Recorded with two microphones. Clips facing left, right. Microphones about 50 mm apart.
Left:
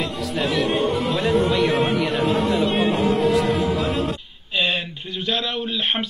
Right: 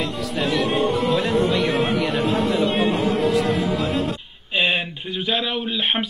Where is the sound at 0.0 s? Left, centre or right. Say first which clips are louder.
Even; centre.